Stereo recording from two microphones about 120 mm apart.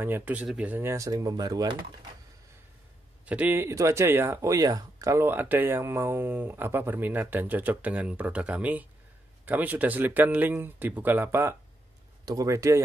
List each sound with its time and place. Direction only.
0.0 s speech: 15° right (ahead or behind); by 1.8 s 35° right (ahead or behind)
3.3 s speech: 15° right (ahead or behind)